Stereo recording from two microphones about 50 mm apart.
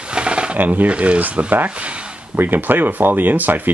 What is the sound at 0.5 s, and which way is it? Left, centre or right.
Speech, right.